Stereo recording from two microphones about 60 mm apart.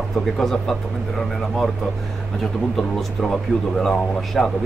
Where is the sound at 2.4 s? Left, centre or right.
Centre.